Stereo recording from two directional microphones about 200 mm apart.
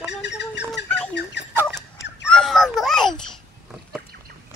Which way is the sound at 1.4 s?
60° left (ahead or behind).